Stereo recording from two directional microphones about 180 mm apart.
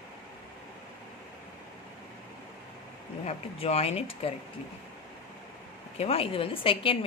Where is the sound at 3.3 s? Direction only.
35° left (ahead or behind).